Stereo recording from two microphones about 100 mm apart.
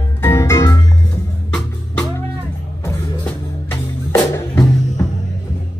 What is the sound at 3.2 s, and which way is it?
Music, 20° left (ahead or behind).